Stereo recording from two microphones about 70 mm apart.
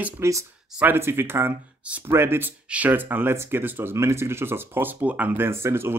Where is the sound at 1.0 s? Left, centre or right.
Right.